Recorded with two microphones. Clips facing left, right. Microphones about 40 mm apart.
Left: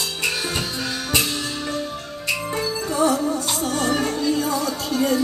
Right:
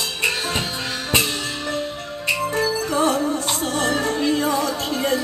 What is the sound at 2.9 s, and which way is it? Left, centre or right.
Music, right.